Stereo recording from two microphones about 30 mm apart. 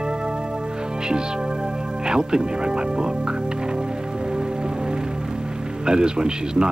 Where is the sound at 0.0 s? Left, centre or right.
Right.